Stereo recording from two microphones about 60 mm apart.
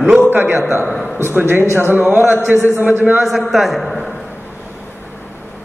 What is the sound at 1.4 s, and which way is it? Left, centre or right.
Speech, right.